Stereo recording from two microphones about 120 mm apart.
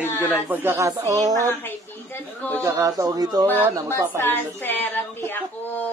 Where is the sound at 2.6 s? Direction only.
30° right (ahead or behind).